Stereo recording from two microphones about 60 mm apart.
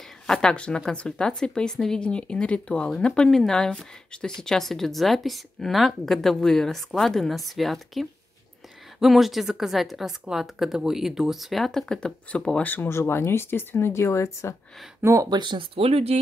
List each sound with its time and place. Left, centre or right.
0.3 s a woman's voice: centre
12.8 s speech: left
15.0 s speech: right